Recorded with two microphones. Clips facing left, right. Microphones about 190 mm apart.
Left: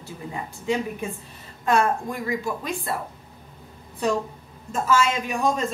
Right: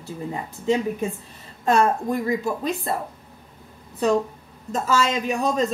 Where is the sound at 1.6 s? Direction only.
40° right (ahead or behind).